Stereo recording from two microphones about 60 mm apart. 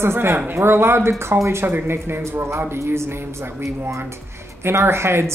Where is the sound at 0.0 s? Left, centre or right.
Right.